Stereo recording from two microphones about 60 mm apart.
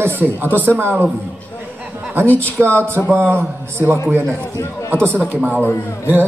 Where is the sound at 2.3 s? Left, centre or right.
Right.